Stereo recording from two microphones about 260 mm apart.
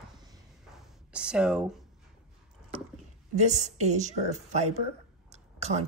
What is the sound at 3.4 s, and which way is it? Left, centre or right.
Speech, right.